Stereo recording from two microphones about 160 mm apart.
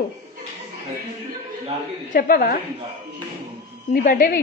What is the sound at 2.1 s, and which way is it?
Speech, 60° left (ahead or behind).